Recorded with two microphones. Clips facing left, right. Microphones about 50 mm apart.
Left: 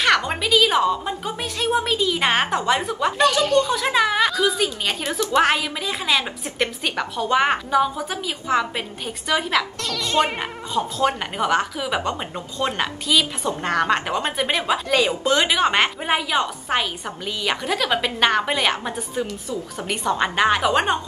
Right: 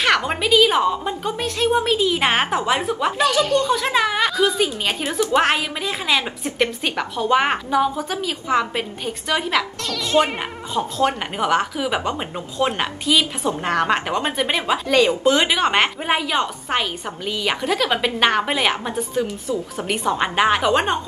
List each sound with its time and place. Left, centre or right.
0.0 s a woman's voice: centre